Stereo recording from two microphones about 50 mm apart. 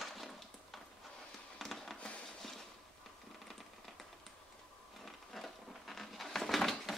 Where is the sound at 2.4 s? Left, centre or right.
Centre.